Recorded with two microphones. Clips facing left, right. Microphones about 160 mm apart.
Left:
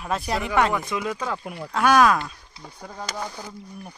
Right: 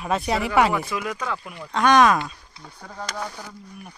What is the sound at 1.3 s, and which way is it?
Speech, 40° left (ahead or behind).